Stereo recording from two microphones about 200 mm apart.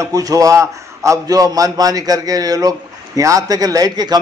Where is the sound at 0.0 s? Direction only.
15° right (ahead or behind).